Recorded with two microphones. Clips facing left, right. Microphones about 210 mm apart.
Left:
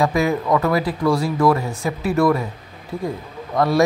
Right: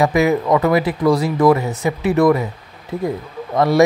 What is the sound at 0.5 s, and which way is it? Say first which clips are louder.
Speech: right 3 dB; 20° right (ahead or behind).